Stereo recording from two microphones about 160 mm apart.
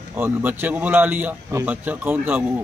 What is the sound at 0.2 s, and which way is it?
Speech, 15° right (ahead or behind).